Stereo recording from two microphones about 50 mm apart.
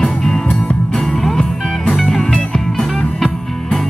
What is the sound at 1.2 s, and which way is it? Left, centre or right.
Music, centre.